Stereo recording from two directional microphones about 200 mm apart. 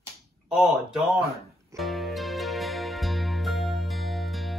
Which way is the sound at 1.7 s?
Centre (ahead or behind).